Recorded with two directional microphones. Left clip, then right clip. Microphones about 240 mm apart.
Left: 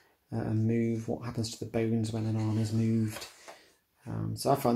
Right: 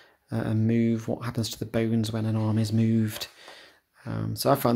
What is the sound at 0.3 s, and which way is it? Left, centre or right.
Speech, right.